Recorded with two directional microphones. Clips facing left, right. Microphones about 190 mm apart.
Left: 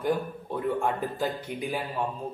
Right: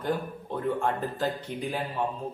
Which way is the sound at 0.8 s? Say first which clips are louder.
Even; 10° left (ahead or behind).